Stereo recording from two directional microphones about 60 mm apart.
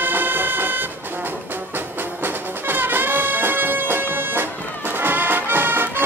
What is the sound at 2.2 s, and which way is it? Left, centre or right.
Music, right.